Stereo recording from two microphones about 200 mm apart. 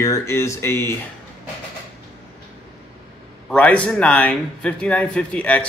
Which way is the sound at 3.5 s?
5° left (ahead or behind).